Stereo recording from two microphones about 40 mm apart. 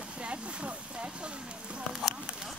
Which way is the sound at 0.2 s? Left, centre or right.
Right.